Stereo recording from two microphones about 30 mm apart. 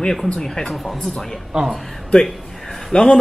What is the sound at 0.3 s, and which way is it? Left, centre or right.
Speech, centre.